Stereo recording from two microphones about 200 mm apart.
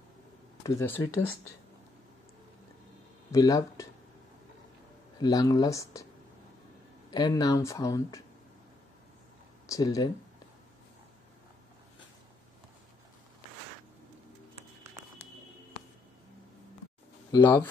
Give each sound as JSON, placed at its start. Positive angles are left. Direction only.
{"t": 0.7, "sound": "speech", "side_deg": 10}
{"t": 3.3, "sound": "speech", "side_deg": 20}
{"t": 5.2, "sound": "speech", "side_deg": 20}
{"t": 7.1, "sound": "speech", "side_deg": 20}
{"t": 9.7, "sound": "speech", "side_deg": 15}
{"t": 17.3, "sound": "speech", "side_deg": 20}